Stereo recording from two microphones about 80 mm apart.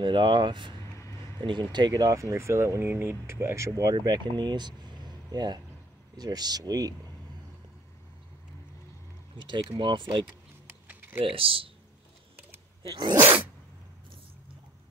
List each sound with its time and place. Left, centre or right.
0.0 s speech: right
3.9 s speech: right
9.4 s speech: right
10.9 s typing: centre
11.2 s speech: right
12.8 s speech: right
13.2 s zipper: right